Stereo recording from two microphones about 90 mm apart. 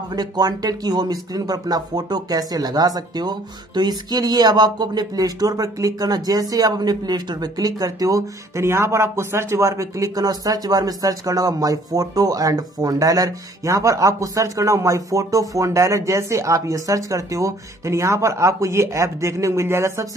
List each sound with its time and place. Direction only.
0.1 s speech: 45° right (ahead or behind)